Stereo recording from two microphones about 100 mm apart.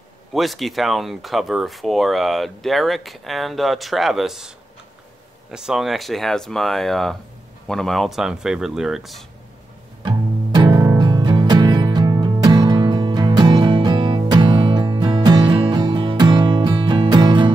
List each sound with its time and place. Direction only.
0.3 s speech: centre (ahead or behind)
5.5 s speech: 5° right (ahead or behind)
10.0 s music: 50° right (ahead or behind)